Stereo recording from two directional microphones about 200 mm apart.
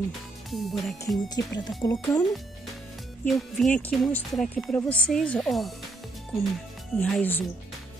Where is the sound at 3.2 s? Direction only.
Centre (ahead or behind).